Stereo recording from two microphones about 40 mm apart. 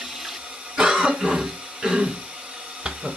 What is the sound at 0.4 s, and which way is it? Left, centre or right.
Water, right.